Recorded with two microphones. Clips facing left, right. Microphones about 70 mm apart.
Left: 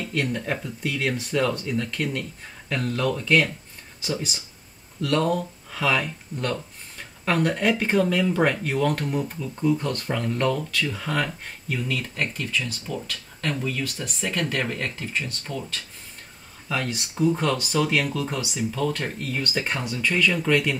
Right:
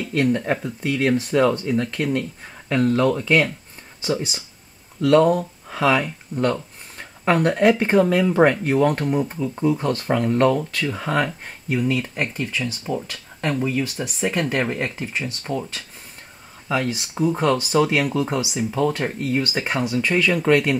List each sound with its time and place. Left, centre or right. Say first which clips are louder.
0.1 s speech: right 8 dB; centre
4.0 s speech: right 5 dB; right
7.7 s speech: right 4 dB; right
8.0 s speech: right 6 dB; right
16.6 s speech: right 5 dB; centre